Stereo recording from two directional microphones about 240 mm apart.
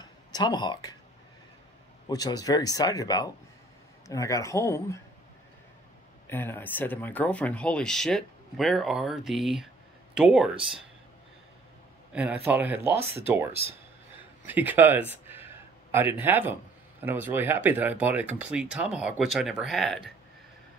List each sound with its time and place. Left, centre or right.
0.0 s a sound: centre
2.0 s speech: centre
6.2 s speech: centre
12.1 s a man's voice: centre
14.4 s speech: centre